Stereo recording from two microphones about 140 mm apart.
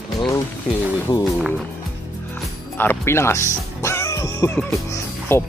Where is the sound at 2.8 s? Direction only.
15° left (ahead or behind).